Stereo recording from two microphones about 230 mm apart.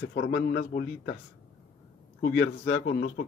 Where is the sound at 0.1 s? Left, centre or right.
Left.